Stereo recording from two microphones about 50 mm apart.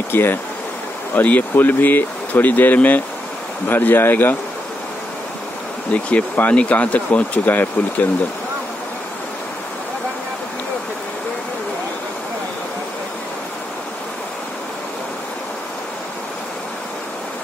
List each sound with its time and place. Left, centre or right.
0.1 s speech: left
1.1 s speech: left
5.9 s speech: left